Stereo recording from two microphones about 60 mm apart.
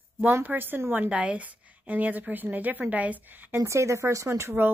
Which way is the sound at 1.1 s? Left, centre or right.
Right.